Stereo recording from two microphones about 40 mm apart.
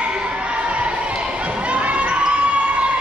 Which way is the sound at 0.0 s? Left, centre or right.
Right.